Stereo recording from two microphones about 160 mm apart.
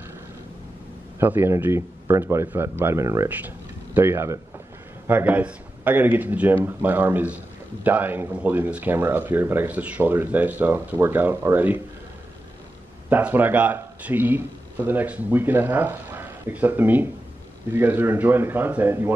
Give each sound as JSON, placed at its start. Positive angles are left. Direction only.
{"t": 1.2, "sound": "speech", "side_deg": -15}
{"t": 13.1, "sound": "speech", "side_deg": -10}